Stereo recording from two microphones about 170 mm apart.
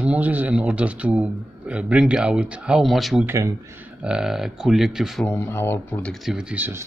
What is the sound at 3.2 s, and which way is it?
Speech, 15° right (ahead or behind).